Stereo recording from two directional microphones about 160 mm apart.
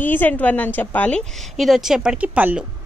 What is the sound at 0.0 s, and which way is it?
A woman's voice, 10° left (ahead or behind).